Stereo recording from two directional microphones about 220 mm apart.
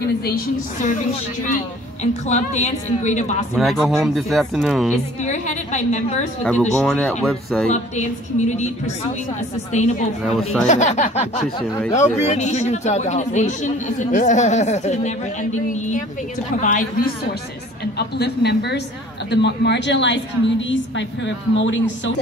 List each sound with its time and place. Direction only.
2.2 s speech: 30° left (ahead or behind)
3.5 s speech: centre (ahead or behind)
4.9 s speech: 30° left (ahead or behind)
6.4 s speech: 5° left (ahead or behind)
7.7 s speech: 30° left (ahead or behind)
9.7 s a woman's voice: 30° left (ahead or behind); by 22.1 s 55° left (ahead or behind)